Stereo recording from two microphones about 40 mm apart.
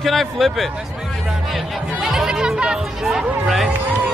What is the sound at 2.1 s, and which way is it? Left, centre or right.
Music, centre.